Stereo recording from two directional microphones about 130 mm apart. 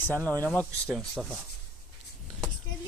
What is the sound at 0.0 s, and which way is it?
Speech, 15° left (ahead or behind).